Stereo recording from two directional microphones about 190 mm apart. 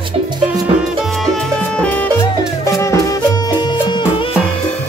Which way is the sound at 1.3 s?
5° left (ahead or behind).